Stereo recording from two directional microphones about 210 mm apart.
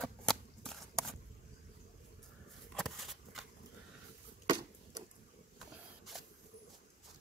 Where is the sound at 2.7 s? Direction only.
Centre (ahead or behind).